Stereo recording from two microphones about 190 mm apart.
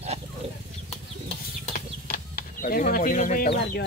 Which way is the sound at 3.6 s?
60° left (ahead or behind).